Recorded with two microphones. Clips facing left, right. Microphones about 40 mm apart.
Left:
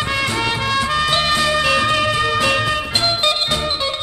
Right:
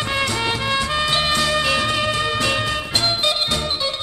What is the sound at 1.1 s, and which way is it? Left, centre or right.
Music, centre.